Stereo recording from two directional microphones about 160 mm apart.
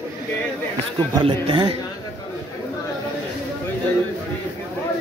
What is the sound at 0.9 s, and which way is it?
Speech, 30° right (ahead or behind).